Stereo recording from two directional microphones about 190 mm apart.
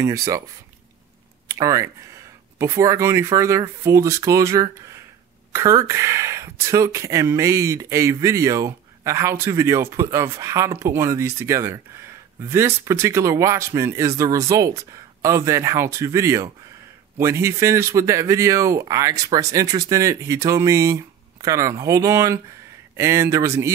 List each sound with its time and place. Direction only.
0.0 s speech: 15° right (ahead or behind)
1.5 s speech: 15° right (ahead or behind)